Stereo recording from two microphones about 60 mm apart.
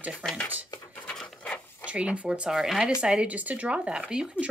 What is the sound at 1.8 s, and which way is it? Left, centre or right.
Speech, right.